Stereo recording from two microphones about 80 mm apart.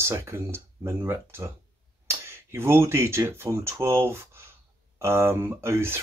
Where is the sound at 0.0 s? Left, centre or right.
Right.